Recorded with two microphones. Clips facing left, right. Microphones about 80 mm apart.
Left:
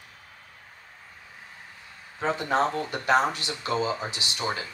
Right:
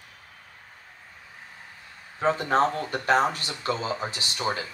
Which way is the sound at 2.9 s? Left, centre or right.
Right.